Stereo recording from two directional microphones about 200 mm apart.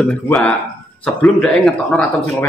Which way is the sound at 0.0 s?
5° left (ahead or behind).